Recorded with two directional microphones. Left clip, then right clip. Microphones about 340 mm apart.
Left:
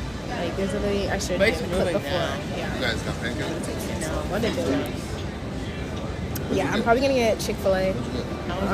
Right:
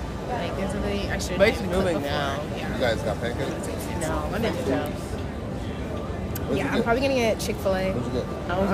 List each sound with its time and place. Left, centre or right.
0.4 s speech: centre
1.4 s speech: centre
6.5 s speech: centre